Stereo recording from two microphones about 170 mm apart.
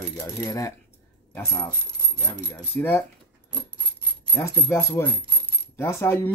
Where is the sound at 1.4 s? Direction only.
20° left (ahead or behind).